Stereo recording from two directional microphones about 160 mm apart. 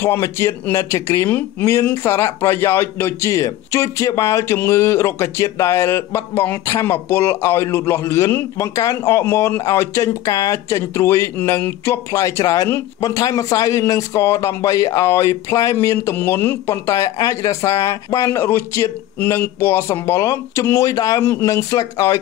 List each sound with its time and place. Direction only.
0.0 s speech: 15° left (ahead or behind)